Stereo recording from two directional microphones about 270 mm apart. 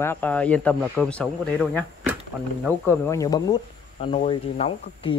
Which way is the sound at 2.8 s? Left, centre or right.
Centre.